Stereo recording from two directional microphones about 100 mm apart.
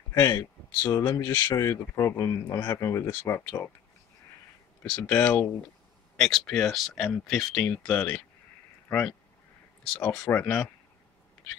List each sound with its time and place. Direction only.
0.2 s speech: 25° left (ahead or behind)
4.8 s speech: 15° left (ahead or behind)
6.1 s speech: 5° left (ahead or behind)
7.5 s speech: 15° left (ahead or behind)
10.4 s speech: 10° left (ahead or behind)